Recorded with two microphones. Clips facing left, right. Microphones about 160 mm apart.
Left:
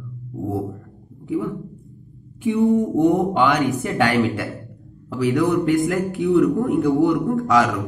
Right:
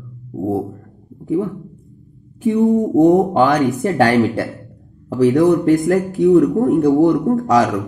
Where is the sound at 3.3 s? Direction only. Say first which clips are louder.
Right 4 dB; 40° right (ahead or behind).